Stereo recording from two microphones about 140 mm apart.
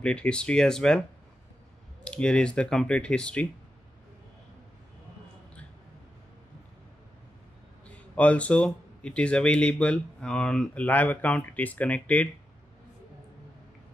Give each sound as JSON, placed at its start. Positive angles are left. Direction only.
{"t": 0.0, "sound": "speech", "side_deg": 5}
{"t": 2.0, "sound": "speech", "side_deg": 5}
{"t": 8.2, "sound": "speech", "side_deg": 10}